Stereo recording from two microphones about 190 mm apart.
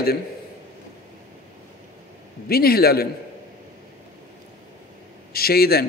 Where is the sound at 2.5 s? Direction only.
55° left (ahead or behind).